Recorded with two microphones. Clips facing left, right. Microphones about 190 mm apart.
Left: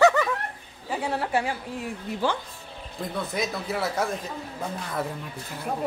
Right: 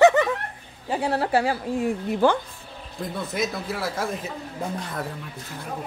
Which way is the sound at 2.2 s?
55° right (ahead or behind).